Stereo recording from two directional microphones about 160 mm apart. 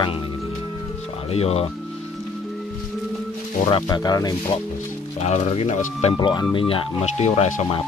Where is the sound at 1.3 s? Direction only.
40° left (ahead or behind).